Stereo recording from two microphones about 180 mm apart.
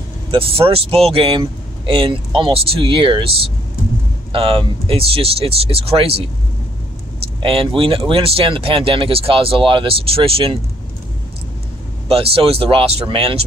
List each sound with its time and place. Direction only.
0.3 s speech: 30° right (ahead or behind)
7.4 s speech: 30° right (ahead or behind)
12.1 s speech: 30° right (ahead or behind)